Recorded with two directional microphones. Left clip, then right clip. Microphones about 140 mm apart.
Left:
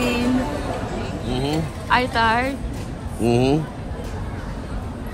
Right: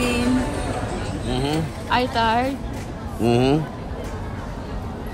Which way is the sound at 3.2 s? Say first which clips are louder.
Even; 20° right (ahead or behind).